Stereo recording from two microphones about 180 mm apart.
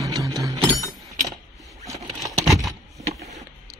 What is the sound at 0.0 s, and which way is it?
Chink, 20° right (ahead or behind).